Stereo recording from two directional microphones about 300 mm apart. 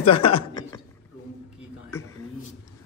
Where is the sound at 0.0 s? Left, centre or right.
Centre.